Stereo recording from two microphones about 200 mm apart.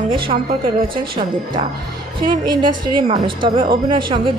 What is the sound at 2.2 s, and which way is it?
A woman's voice, 25° right (ahead or behind).